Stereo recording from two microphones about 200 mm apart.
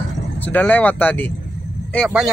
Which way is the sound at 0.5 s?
10° left (ahead or behind).